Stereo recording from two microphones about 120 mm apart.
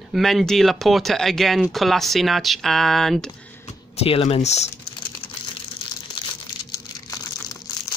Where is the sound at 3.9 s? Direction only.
55° left (ahead or behind).